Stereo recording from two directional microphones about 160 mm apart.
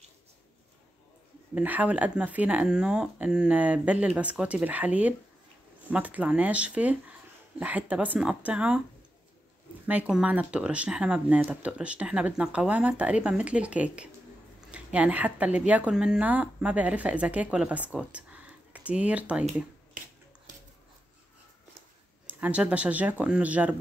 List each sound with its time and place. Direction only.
1.5 s speech: 10° right (ahead or behind)
9.8 s speech: 10° right (ahead or behind)
20.0 s a sound: 55° right (ahead or behind)
22.2 s speech: 10° right (ahead or behind)